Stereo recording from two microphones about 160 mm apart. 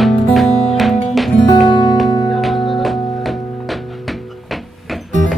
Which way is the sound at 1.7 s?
30° left (ahead or behind).